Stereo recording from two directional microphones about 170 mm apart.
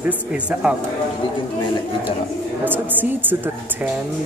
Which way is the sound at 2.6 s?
10° right (ahead or behind).